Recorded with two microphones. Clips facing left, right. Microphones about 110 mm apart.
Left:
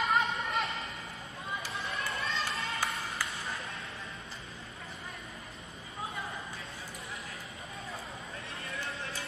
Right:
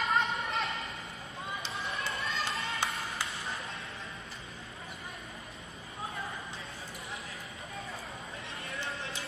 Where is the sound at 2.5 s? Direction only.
25° right (ahead or behind).